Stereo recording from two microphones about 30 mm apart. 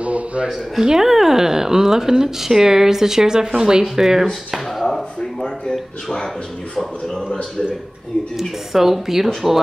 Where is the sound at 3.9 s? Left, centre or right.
Centre.